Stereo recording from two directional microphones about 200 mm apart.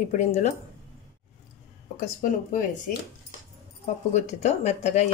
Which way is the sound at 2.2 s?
45° left (ahead or behind).